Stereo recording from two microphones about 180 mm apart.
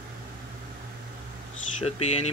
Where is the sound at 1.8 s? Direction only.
35° left (ahead or behind).